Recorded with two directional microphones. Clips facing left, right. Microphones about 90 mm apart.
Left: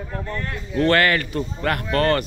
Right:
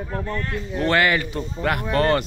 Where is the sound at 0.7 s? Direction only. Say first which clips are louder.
Left 2 dB; 15° right (ahead or behind).